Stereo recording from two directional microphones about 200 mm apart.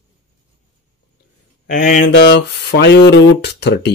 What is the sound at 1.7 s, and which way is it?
Mantra, 40° left (ahead or behind).